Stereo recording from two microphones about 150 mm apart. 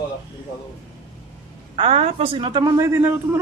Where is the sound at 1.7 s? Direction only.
40° right (ahead or behind); by 3.4 s 15° right (ahead or behind).